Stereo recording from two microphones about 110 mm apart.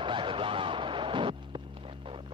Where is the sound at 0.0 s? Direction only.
50° right (ahead or behind).